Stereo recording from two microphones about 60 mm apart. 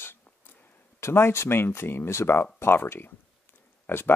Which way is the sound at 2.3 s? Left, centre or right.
Left.